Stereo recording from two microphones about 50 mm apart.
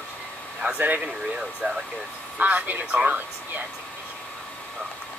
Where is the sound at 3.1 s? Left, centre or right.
Right.